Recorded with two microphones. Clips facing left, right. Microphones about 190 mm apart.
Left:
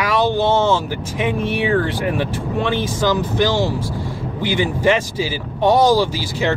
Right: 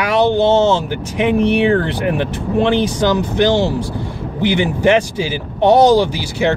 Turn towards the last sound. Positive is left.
turn(degrees=-20)  # may be behind; listen again after turning